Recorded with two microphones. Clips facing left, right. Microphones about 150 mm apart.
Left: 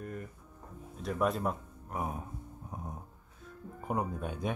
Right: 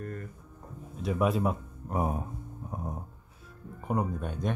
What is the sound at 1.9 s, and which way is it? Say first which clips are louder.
Speech: right 6 dB; 35° right (ahead or behind).